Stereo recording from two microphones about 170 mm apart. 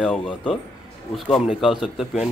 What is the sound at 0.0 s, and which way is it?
Speech, 5° left (ahead or behind).